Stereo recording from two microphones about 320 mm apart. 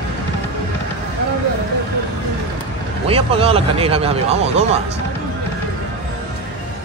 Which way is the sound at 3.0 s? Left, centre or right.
Centre.